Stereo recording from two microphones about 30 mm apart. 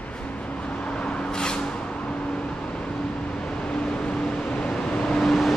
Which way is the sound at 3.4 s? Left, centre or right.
Left.